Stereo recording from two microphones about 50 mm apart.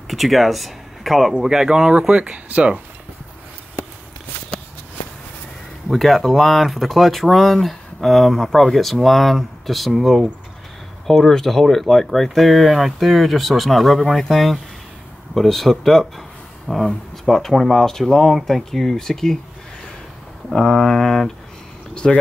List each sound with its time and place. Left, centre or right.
0.1 s speech: centre; by 2.8 s right
5.9 s speech: centre
11.1 s speech: centre
20.5 s speech: centre
21.9 s a sound: left